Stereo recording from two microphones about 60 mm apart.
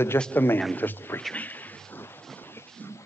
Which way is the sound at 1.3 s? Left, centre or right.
Left.